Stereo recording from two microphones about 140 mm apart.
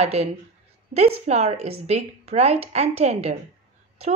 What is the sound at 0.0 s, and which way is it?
Speech, 50° right (ahead or behind).